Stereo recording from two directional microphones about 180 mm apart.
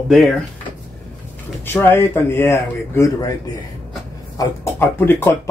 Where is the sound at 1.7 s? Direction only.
15° left (ahead or behind).